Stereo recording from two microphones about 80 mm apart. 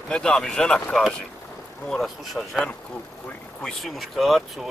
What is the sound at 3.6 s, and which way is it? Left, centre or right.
Speech, centre.